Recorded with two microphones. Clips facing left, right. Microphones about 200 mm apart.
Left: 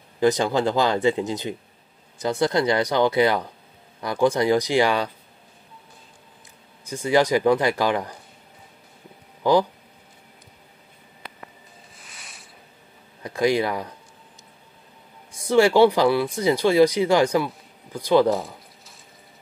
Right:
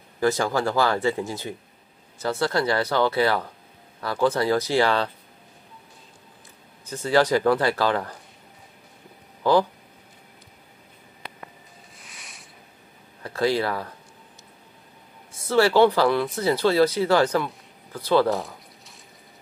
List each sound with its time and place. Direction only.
0.2 s speech: 20° left (ahead or behind)
6.9 s speech: 15° left (ahead or behind)
9.4 s speech: 15° left (ahead or behind)
12.0 s a sound: centre (ahead or behind)
13.2 s speech: 15° left (ahead or behind)
15.3 s speech: 15° left (ahead or behind)